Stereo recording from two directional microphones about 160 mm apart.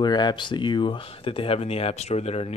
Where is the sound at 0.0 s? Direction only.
25° left (ahead or behind).